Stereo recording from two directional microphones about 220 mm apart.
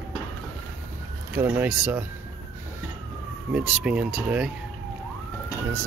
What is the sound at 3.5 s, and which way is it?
Speech, 5° right (ahead or behind).